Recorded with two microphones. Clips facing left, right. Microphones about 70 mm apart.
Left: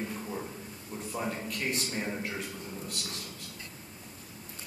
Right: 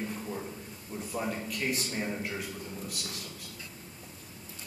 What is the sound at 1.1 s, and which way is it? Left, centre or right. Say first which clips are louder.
Speech: right 1 dB; centre.